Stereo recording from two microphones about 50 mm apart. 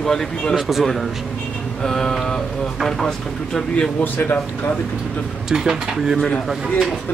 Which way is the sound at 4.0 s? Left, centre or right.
Left.